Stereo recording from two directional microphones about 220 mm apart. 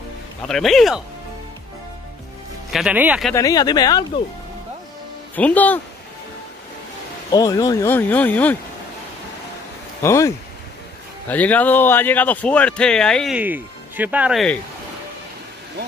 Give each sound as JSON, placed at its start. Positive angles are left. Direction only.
{"t": 0.5, "sound": "speech", "side_deg": 0}
{"t": 2.7, "sound": "speech", "side_deg": -5}
{"t": 3.3, "sound": "speech", "side_deg": 15}
{"t": 5.3, "sound": "speech", "side_deg": 5}
{"t": 7.2, "sound": "speech", "side_deg": 15}
{"t": 10.0, "sound": "speech", "side_deg": 15}